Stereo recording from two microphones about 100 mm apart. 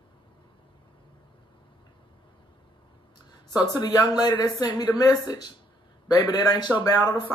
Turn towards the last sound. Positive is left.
turn(degrees=45)  # may be behind; listen again after turning